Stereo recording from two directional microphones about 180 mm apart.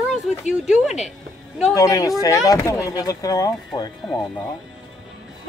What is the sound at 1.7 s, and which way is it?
Speech, 20° left (ahead or behind).